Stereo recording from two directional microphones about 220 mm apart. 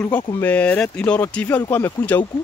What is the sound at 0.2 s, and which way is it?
Speech, 15° left (ahead or behind).